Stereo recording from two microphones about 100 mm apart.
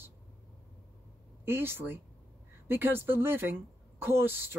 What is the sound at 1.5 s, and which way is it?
Speech, 20° right (ahead or behind).